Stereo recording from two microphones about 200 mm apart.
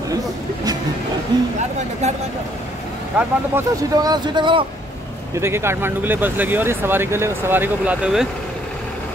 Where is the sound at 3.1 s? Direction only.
15° right (ahead or behind).